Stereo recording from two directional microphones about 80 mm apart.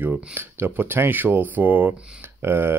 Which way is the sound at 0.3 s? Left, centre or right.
Right.